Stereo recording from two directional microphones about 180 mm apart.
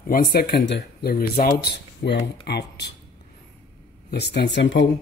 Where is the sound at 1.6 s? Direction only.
70° left (ahead or behind).